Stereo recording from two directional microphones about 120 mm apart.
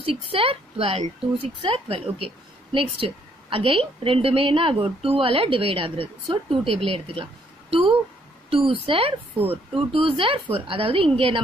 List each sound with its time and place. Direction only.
0.0 s a woman's voice: 50° right (ahead or behind)